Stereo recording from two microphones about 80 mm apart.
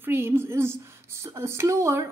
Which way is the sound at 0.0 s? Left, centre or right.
Right.